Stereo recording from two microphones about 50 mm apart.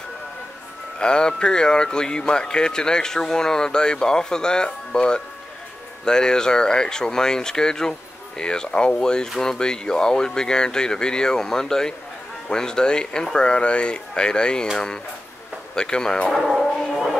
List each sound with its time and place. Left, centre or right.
0.9 s speech: centre
15.7 s speech: centre
16.3 s a sound: centre